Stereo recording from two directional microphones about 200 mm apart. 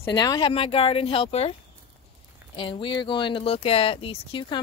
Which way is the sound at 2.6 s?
25° left (ahead or behind).